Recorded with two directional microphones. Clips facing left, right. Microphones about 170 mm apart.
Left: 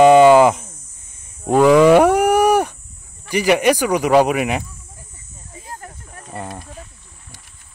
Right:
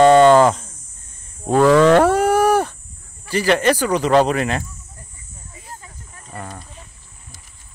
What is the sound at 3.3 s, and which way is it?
Speech, 15° left (ahead or behind).